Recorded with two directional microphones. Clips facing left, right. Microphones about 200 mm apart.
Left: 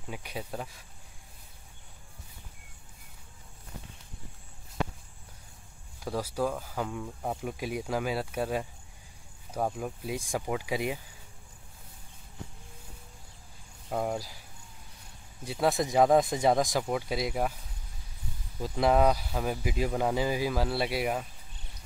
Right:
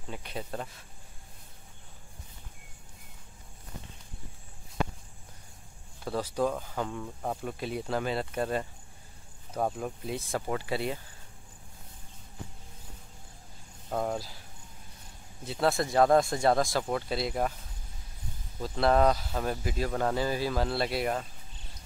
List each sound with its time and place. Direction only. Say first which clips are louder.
0.1 s speech: even; 10° left (ahead or behind)
6.0 s speech: right 1 dB; 10° left (ahead or behind)
9.8 s speech: even; 5° left (ahead or behind)
13.8 s speech: even; 5° left (ahead or behind)
15.4 s speech: even; 10° left (ahead or behind)
18.6 s speech: even; 10° left (ahead or behind)